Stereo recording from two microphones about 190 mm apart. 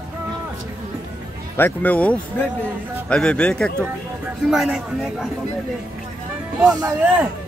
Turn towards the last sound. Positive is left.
turn(degrees=-20)  # may be behind; listen again after turning